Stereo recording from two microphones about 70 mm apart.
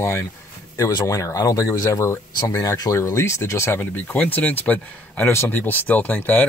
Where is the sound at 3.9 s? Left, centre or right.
Left.